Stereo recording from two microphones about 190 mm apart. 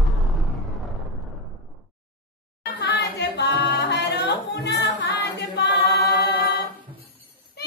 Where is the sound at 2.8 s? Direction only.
60° left (ahead or behind).